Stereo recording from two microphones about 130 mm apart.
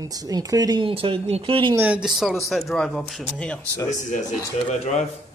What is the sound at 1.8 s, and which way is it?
Speech, 10° right (ahead or behind).